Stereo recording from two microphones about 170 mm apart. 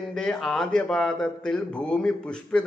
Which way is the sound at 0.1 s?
5° left (ahead or behind).